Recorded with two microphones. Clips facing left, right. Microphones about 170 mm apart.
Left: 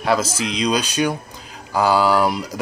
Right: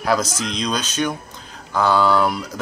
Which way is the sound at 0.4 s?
10° left (ahead or behind).